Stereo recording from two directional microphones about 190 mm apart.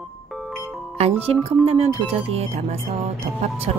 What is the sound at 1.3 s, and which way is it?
Speech, 30° right (ahead or behind).